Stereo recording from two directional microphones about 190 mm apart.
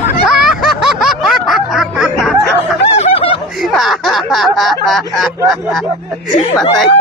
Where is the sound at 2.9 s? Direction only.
30° left (ahead or behind).